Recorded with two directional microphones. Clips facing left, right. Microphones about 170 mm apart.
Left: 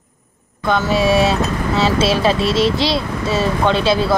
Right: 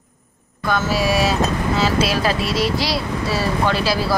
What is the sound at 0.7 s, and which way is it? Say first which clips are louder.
Speech: left 4 dB; 25° left (ahead or behind).